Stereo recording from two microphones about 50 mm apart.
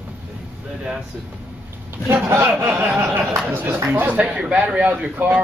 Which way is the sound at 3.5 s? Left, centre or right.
Right.